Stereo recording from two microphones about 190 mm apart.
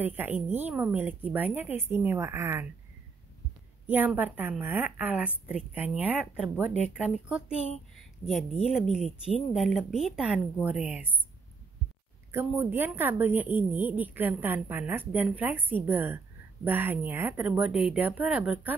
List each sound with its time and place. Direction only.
0.0 s a woman's voice: 10° right (ahead or behind)
3.8 s a woman's voice: 10° right (ahead or behind)
7.5 s a woman's voice: 35° left (ahead or behind)
8.3 s speech: centre (ahead or behind)
12.3 s a woman's voice: 10° right (ahead or behind)